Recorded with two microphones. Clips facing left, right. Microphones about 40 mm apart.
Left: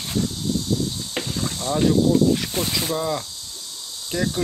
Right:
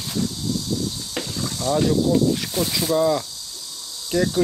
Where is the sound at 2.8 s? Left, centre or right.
Left.